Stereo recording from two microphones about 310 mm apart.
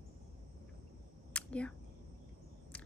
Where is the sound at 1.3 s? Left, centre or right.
Centre.